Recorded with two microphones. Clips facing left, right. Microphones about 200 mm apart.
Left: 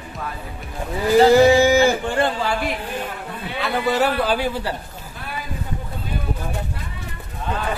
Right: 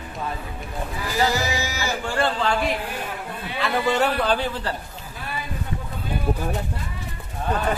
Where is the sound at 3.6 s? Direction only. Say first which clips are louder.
Left 1 dB; 5° left (ahead or behind).